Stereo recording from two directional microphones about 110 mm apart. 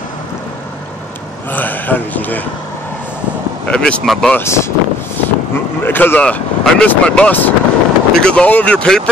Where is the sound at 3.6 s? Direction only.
10° left (ahead or behind).